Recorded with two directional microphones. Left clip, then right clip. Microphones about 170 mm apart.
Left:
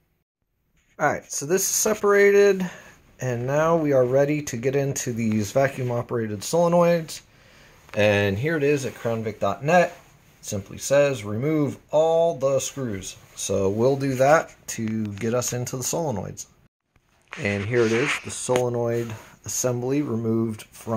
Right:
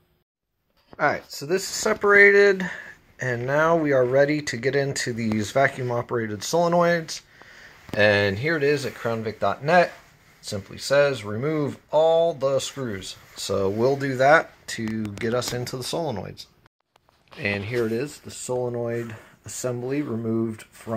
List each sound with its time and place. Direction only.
1.3 s speech: centre (ahead or behind)
17.6 s speech: 5° right (ahead or behind)
19.4 s speech: 20° left (ahead or behind)
20.1 s speech: centre (ahead or behind)